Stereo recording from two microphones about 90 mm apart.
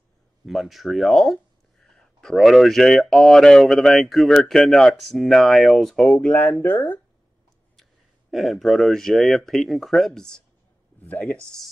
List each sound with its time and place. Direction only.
0.5 s speech: centre (ahead or behind)
6.1 s speech: 15° left (ahead or behind)
8.3 s speech: centre (ahead or behind)
11.0 s speech: 20° left (ahead or behind)